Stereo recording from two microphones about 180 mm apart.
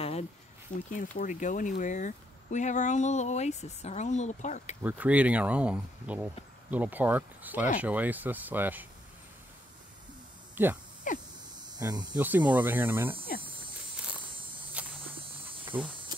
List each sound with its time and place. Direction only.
0.7 s speech: 45° left (ahead or behind)
4.8 s speech: 10° right (ahead or behind)
10.5 s a sound: 10° right (ahead or behind)
11.1 s a sound: 45° left (ahead or behind)
11.5 s hum: 25° right (ahead or behind)
12.2 s speech: 10° right (ahead or behind)
13.9 s insect: 5° right (ahead or behind)
15.5 s insect: 30° right (ahead or behind)
16.1 s a sound: 25° right (ahead or behind)